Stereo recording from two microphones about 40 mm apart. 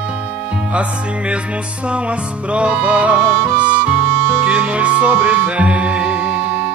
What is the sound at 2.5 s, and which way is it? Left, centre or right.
Music, right.